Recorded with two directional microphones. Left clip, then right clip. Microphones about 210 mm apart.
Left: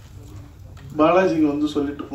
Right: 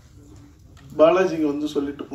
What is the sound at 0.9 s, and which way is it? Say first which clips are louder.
A man's voice: even; 55° right (ahead or behind).